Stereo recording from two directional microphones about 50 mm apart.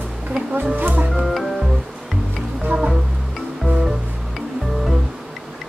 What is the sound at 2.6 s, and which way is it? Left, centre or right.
Music, right.